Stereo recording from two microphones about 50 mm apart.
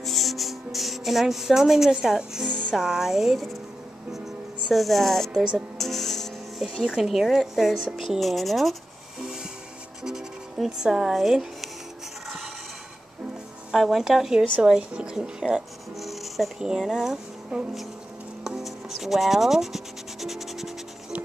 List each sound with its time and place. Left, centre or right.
0.0 s music: centre
2.7 s a woman's voice: centre
4.7 s a woman's voice: centre
5.3 s a woman's voice: centre
5.8 s music: centre
6.8 s a woman's voice: centre
10.0 s speech: centre
13.7 s a woman's voice: centre
14.6 s a woman's voice: centre
16.0 s music: centre
16.5 s a woman's voice: centre
17.5 s a woman's voice: centre
18.6 s rub: centre